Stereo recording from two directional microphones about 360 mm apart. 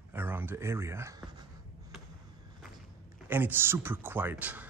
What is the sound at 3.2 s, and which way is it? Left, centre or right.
Speech, centre.